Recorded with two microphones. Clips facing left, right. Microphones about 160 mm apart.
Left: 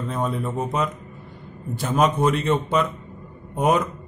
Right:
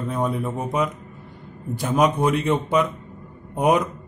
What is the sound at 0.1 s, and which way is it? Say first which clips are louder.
Speech: right 1 dB; 10° right (ahead or behind).